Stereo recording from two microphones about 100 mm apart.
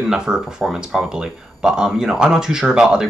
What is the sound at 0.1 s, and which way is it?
Speech, 5° right (ahead or behind).